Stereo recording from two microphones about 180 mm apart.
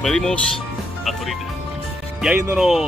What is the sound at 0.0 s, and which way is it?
Speech, 5° left (ahead or behind).